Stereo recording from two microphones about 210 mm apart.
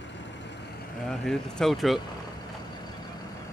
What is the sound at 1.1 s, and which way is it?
Speech, centre (ahead or behind).